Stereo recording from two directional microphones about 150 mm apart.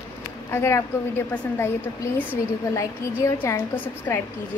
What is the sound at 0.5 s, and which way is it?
A woman's voice, 15° left (ahead or behind).